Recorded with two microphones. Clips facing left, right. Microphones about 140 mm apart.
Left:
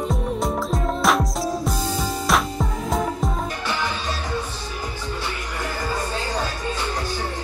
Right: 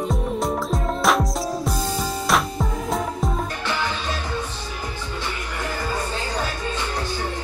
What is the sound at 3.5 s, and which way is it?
Music, 10° left (ahead or behind).